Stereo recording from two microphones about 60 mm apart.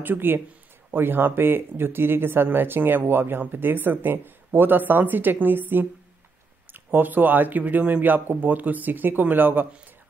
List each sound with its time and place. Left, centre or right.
0.0 s speech: right